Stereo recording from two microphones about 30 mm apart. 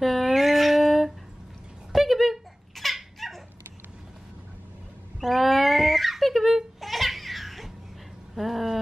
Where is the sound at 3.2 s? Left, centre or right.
Centre.